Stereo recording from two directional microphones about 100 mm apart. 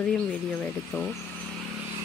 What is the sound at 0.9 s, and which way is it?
Speech, 20° left (ahead or behind).